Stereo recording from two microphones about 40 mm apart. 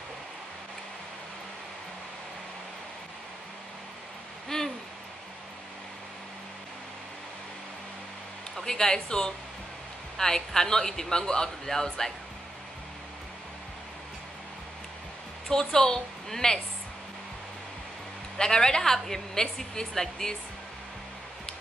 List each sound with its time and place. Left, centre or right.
4.5 s hoot: centre
8.6 s speech: centre
15.4 s a woman's voice: centre
18.4 s speech: centre